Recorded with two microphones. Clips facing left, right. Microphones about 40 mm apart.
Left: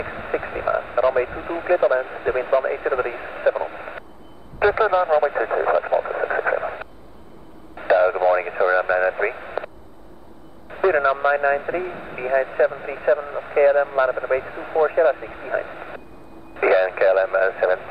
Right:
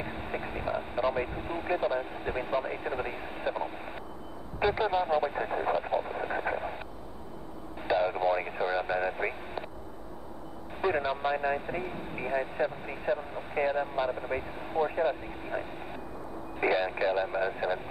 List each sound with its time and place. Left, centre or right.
0.0 s speech: left
4.6 s radio: left
8.4 s speech: left
8.6 s speech: left
10.7 s speech: left
17.0 s speech: left